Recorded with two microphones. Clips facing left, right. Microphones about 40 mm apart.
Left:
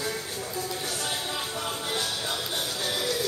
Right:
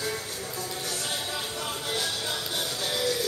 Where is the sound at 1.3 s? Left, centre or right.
Centre.